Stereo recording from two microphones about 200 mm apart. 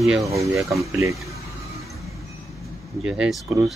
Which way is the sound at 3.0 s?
Centre (ahead or behind).